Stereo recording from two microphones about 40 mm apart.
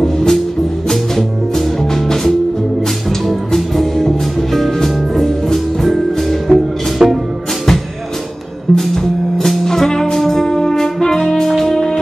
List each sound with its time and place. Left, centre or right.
0.0 s music: centre
3.3 s music: centre
7.0 s music: centre
8.7 s music: centre